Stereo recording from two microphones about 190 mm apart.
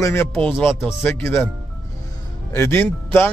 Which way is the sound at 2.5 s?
10° left (ahead or behind).